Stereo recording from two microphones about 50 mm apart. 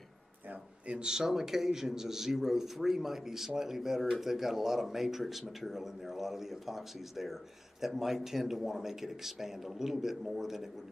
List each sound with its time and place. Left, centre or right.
0.5 s a man's voice: right